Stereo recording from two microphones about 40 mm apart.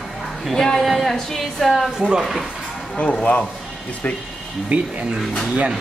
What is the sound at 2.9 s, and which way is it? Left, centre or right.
Speech, left.